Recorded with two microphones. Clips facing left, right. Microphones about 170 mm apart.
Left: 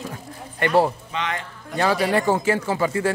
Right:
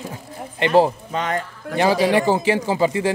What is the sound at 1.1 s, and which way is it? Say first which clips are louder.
Speech: right 4 dB; 45° right (ahead or behind).